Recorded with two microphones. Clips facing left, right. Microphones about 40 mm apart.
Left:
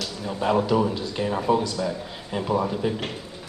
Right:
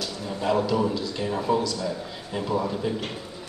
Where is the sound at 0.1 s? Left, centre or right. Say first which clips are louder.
Left 2 dB; left.